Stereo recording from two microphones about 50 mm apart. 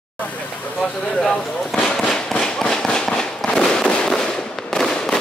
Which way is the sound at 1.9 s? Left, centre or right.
Centre.